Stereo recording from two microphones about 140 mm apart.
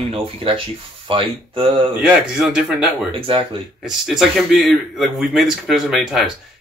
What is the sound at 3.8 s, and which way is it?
Speech, 5° right (ahead or behind).